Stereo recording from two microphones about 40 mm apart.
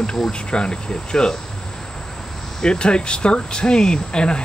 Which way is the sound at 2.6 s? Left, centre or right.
Left.